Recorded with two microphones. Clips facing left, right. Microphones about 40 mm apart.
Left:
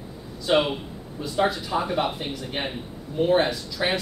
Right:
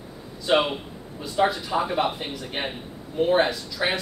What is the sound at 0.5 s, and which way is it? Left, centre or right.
A man's voice, centre.